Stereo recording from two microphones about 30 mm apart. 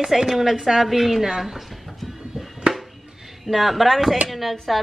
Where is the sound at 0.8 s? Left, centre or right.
Centre.